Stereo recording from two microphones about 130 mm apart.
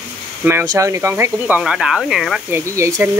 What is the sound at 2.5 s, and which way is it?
Speech, 20° right (ahead or behind).